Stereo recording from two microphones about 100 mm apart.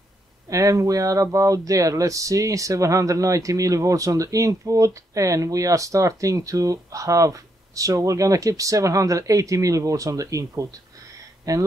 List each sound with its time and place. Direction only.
0.5 s speech: 35° right (ahead or behind)